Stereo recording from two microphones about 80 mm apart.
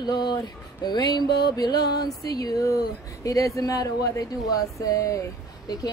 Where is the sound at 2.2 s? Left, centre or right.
Left.